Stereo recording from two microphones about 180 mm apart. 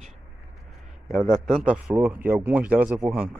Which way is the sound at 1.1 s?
5° left (ahead or behind).